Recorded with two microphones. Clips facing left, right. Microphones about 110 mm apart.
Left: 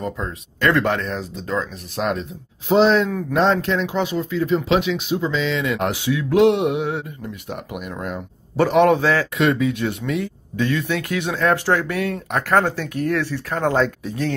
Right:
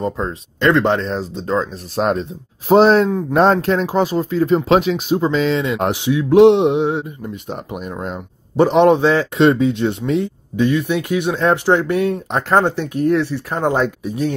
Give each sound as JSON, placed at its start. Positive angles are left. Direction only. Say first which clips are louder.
{"t": 0.0, "sound": "speech", "louder": "right 5 dB", "side_deg": -30}
{"t": 3.1, "sound": "speech", "louder": "right 5 dB", "side_deg": -25}
{"t": 3.3, "sound": "speech", "louder": "right 4 dB", "side_deg": -45}
{"t": 5.6, "sound": "speech", "louder": "right 3 dB", "side_deg": -25}
{"t": 10.5, "sound": "speech", "louder": "right 5 dB", "side_deg": -15}